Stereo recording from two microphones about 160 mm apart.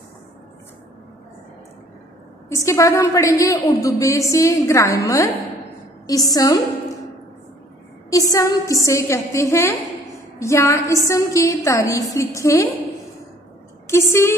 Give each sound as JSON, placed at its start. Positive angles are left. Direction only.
{"t": 2.5, "sound": "a woman's voice", "side_deg": 20}
{"t": 8.1, "sound": "a woman's voice", "side_deg": 20}
{"t": 13.8, "sound": "speech", "side_deg": 15}